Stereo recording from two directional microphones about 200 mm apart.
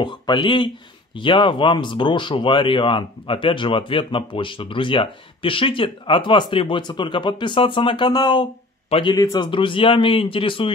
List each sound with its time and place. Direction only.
0.0 s speech: 25° left (ahead or behind)